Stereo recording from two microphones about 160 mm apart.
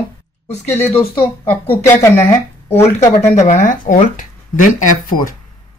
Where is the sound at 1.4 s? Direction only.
15° left (ahead or behind).